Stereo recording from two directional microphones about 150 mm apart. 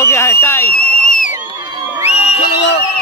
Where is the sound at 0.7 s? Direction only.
80° left.